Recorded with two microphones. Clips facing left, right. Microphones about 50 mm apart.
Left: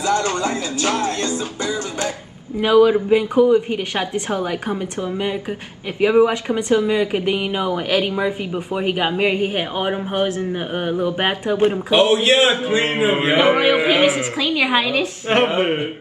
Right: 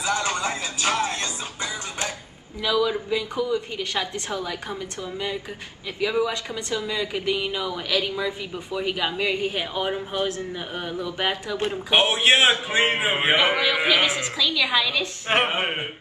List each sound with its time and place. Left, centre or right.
0.0 s speech: right
2.6 s speech: left
5.9 s speech: left
11.5 s speech: left
11.9 s speech: right
13.4 s speech: left
14.4 s speech: left
15.3 s a sound: centre